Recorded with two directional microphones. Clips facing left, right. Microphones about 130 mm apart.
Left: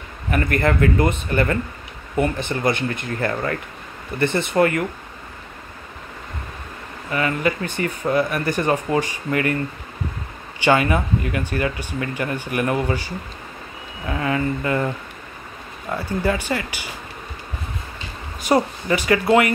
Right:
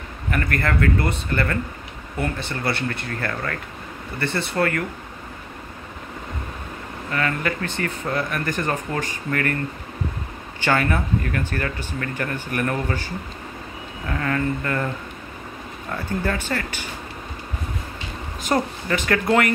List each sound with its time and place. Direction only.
0.3 s speech: 15° left (ahead or behind)
7.1 s speech: 10° left (ahead or behind)
10.6 s speech: 15° left (ahead or behind)
16.1 s speech: 10° left (ahead or behind)
18.5 s speech: 10° left (ahead or behind)